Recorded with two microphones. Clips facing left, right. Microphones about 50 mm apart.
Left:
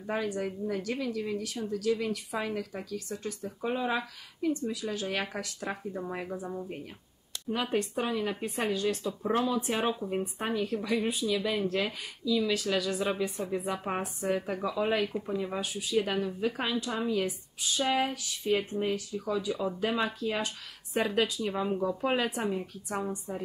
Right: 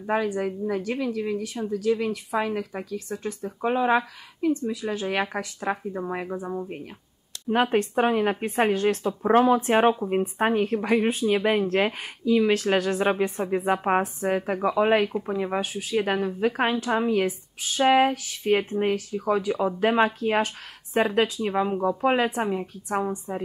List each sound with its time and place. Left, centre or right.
0.0 s speech: right
3.8 s speech: right
7.4 s speech: right